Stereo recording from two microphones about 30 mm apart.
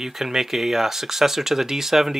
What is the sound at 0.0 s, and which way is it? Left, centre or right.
Speech, centre.